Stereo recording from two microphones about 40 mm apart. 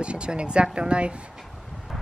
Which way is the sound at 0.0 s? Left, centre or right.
Right.